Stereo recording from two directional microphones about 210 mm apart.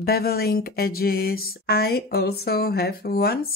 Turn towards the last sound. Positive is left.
turn(degrees=45)  # may be behind; listen again after turning